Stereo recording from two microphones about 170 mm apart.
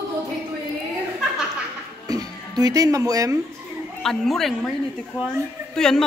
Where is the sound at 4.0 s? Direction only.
Centre (ahead or behind).